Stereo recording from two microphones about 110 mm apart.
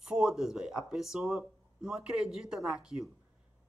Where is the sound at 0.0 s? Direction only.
5° right (ahead or behind).